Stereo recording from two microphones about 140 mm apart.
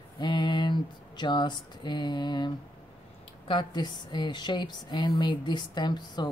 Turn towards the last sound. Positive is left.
turn(degrees=30)  # may be behind; listen again after turning